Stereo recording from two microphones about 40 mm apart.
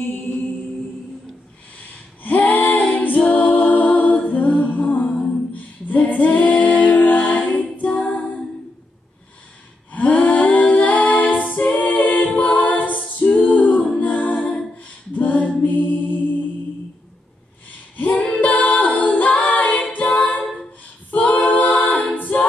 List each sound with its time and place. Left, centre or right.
2.3 s female singing: left
3.3 s a capella: left
5.2 s a sound: left
5.9 s a capella: left
9.9 s a capella: left
15.6 s mantra: left
18.1 s a capella: left